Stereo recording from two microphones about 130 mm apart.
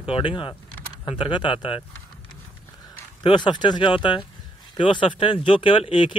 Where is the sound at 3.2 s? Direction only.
35° left (ahead or behind).